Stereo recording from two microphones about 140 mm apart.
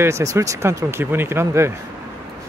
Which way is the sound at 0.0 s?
20° right (ahead or behind).